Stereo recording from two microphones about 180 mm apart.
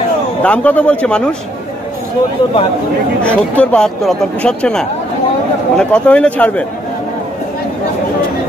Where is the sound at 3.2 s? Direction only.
5° left (ahead or behind).